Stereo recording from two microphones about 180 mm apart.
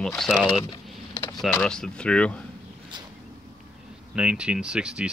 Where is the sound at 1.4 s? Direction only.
5° left (ahead or behind).